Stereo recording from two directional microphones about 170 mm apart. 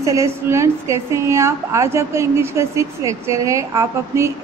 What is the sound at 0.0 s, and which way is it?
A woman's voice, 20° right (ahead or behind).